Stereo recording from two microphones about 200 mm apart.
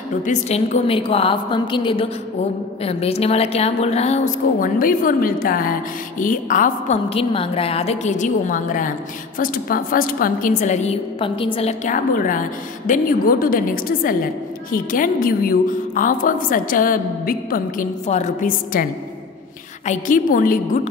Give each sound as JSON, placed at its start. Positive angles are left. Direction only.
{"t": 0.2, "sound": "a woman's voice", "side_deg": 40}
{"t": 19.9, "sound": "a woman's voice", "side_deg": 40}